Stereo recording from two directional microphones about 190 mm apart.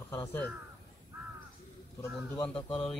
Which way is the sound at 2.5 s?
25° left (ahead or behind).